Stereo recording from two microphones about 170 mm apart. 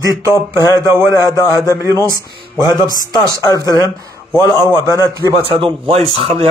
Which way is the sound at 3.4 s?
20° left (ahead or behind).